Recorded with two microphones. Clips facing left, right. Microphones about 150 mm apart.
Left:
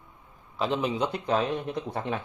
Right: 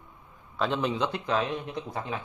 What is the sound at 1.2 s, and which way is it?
Speech, 40° left (ahead or behind).